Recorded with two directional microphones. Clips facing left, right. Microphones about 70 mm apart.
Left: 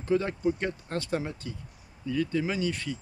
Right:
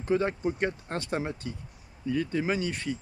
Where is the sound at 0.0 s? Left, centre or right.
Right.